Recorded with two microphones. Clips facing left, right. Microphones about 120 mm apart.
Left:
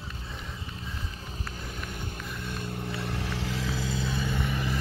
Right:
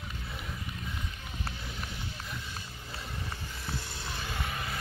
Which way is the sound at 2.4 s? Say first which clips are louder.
Left 9 dB; 55° left (ahead or behind).